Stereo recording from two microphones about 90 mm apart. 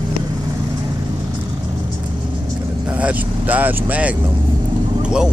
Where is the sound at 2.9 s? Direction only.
15° right (ahead or behind).